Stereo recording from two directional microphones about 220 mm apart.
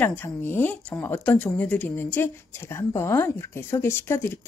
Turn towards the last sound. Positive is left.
turn(degrees=10)  # may be behind; listen again after turning